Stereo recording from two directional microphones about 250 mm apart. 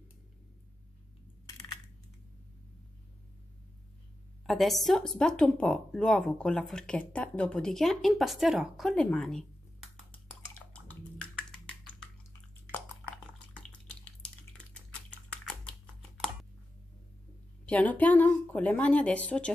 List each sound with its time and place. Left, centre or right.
1.4 s coin: centre
4.5 s speech: centre
10.7 s a sound: centre
12.7 s drip: centre
14.7 s typing: centre
17.6 s speech: centre